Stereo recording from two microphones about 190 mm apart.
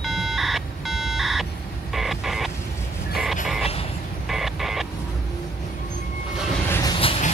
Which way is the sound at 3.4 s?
Centre (ahead or behind).